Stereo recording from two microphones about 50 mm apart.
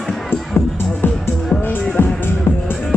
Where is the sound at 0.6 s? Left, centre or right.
Left.